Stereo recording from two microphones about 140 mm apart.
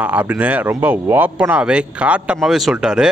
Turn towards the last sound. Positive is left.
turn(degrees=-5)  # may be behind; listen again after turning